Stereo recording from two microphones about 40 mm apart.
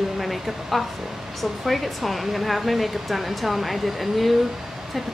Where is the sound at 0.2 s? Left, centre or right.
Centre.